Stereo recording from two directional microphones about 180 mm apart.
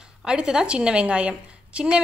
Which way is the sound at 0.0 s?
5° right (ahead or behind).